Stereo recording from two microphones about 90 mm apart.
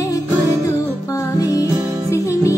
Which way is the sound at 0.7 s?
40° left (ahead or behind).